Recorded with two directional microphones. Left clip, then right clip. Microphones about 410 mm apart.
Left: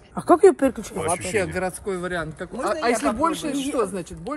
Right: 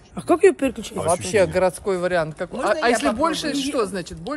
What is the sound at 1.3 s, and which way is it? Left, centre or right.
Speech, right.